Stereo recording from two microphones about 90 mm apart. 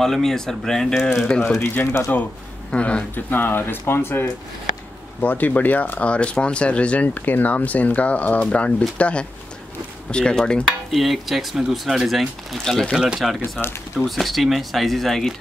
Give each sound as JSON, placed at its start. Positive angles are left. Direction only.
{"t": 0.0, "sound": "speech", "side_deg": 5}
{"t": 1.6, "sound": "speech", "side_deg": 25}
{"t": 2.7, "sound": "speech", "side_deg": 10}
{"t": 13.4, "sound": "speech", "side_deg": 25}
{"t": 13.9, "sound": "speech", "side_deg": 0}